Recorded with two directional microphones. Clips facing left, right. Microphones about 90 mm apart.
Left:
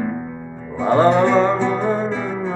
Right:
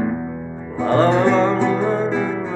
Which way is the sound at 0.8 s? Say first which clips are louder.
Left 1 dB; 10° left (ahead or behind).